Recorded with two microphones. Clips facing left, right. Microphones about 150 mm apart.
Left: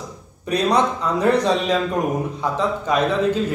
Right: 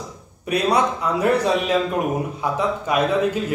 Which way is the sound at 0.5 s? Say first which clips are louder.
Left 1 dB; 10° right (ahead or behind).